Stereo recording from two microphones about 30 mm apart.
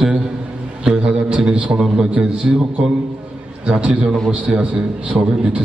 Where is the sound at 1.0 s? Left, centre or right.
Right.